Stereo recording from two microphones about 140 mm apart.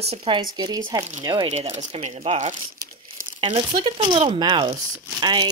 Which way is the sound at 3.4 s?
35° right (ahead or behind).